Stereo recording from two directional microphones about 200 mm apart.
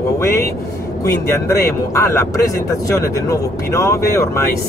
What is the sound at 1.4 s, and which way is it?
Speech, 15° left (ahead or behind).